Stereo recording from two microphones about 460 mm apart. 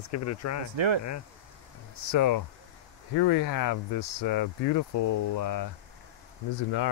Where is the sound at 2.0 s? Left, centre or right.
Left.